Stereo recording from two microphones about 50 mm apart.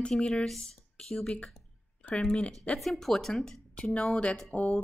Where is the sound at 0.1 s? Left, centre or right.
Centre; by 2.8 s left.